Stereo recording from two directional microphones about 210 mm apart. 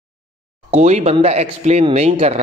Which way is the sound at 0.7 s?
30° right (ahead or behind).